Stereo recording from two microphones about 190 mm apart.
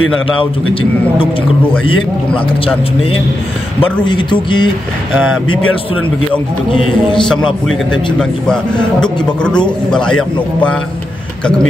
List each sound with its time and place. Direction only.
2.3 s speech: 30° left (ahead or behind)
5.5 s speech: 90° left
8.2 s a man's voice: 5° left (ahead or behind)